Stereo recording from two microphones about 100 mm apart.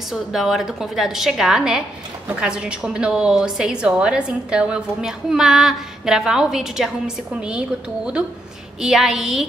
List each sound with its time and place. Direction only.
0.1 s a woman's voice: 5° right (ahead or behind)